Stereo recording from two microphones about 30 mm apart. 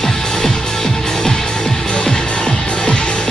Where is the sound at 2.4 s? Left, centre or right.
Left.